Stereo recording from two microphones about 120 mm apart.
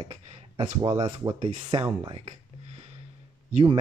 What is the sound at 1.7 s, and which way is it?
Speech, 45° right (ahead or behind).